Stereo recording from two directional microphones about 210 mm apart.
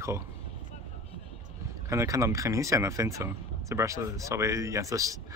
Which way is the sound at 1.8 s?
15° right (ahead or behind).